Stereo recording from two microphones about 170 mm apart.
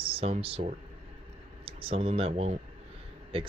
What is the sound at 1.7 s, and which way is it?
Speech, 30° right (ahead or behind).